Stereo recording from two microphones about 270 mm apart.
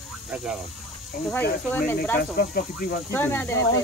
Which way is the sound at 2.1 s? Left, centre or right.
Left.